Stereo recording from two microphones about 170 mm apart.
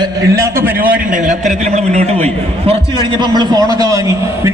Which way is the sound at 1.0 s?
50° right (ahead or behind).